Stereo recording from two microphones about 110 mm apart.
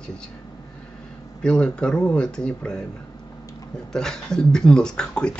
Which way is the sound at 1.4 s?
10° left (ahead or behind).